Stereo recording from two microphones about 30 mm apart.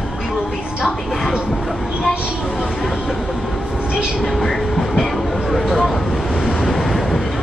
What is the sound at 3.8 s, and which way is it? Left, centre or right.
Train, right.